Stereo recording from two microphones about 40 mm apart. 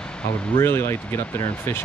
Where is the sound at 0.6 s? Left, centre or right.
Left.